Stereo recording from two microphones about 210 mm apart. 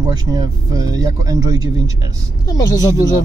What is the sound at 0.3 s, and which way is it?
Speech, 20° right (ahead or behind).